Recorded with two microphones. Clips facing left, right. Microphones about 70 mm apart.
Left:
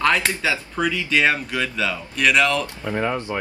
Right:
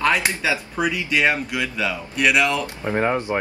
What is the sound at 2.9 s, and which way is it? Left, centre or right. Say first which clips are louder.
Speech: right 4 dB; right.